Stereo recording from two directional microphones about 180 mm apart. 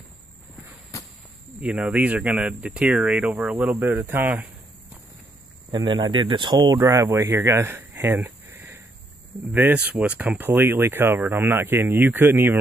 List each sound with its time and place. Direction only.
1.6 s speech: 5° right (ahead or behind)
5.7 s speech: 25° right (ahead or behind)